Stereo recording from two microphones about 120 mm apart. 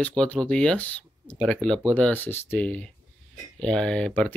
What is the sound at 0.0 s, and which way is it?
Speech, 10° left (ahead or behind).